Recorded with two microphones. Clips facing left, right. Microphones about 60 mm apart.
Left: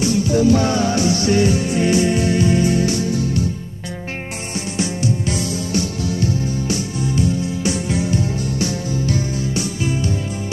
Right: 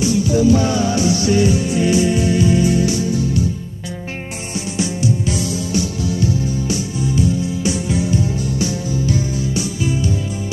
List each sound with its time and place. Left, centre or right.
0.0 s music: left
4.7 s music: left